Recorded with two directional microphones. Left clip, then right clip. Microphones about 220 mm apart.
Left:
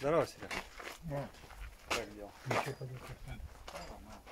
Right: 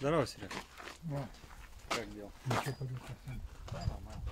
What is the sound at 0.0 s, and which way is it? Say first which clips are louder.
Speech: left 1 dB; 45° right (ahead or behind).